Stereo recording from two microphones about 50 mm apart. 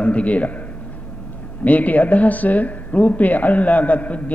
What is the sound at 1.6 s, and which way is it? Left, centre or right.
A man's voice, left.